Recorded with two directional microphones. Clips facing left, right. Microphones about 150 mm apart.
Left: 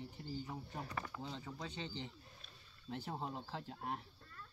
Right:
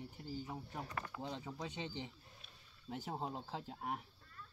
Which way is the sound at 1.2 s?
15° right (ahead or behind).